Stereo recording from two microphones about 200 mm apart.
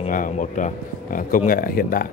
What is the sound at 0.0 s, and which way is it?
Speech, 40° left (ahead or behind).